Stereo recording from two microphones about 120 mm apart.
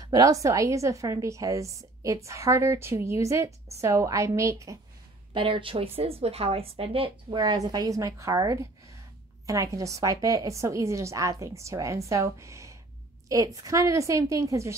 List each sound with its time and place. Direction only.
0.0 s a woman's voice: 30° right (ahead or behind)
5.3 s a woman's voice: 45° right (ahead or behind); by 14.8 s 25° right (ahead or behind)